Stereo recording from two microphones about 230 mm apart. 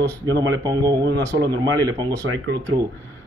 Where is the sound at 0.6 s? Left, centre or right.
Centre.